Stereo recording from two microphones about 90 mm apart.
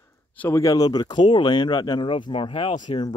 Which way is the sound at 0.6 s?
45° left (ahead or behind).